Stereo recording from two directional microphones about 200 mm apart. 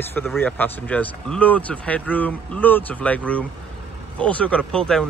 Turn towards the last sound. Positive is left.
turn(degrees=5)  # may be behind; listen again after turning